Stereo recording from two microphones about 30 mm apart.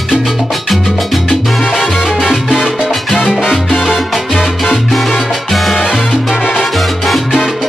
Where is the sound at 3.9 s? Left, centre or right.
Centre.